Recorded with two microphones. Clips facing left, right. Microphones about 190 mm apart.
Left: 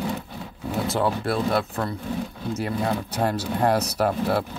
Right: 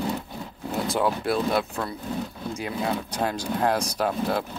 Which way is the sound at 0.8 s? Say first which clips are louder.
Even; centre (ahead or behind).